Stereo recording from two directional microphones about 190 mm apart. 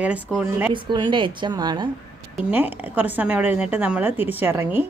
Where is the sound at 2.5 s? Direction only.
10° right (ahead or behind).